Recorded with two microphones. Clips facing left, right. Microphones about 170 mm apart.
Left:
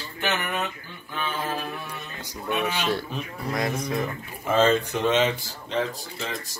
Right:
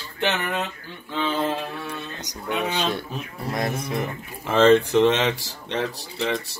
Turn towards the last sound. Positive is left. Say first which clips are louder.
# right 7 dB
turn(degrees=-70)  # may be behind; listen again after turning